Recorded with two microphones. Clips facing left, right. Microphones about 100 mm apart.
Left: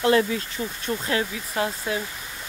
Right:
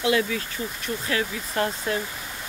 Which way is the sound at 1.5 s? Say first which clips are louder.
Right 1 dB; 10° left (ahead or behind).